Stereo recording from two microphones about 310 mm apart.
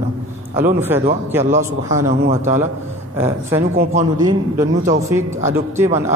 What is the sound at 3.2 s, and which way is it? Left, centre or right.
A man's voice, centre.